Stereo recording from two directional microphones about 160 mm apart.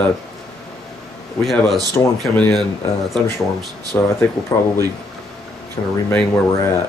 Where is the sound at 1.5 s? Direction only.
Centre (ahead or behind).